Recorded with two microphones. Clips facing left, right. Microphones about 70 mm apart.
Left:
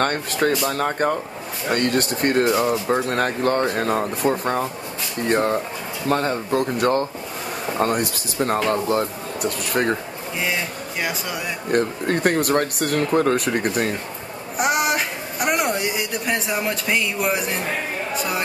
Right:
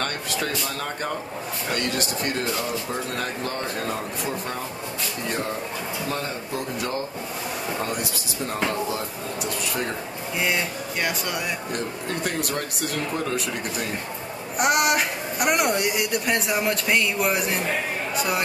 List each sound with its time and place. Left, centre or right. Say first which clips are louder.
0.0 s speech: left 7 dB; left
2.4 s speech: left 8 dB; left
10.4 s speech: even; centre
11.7 s speech: left 8 dB; left
14.6 s a woman's voice: even; centre